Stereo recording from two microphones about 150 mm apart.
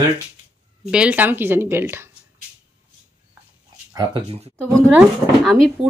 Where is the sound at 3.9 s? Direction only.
25° right (ahead or behind).